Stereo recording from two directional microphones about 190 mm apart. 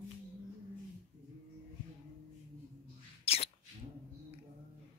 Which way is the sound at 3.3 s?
30° left (ahead or behind).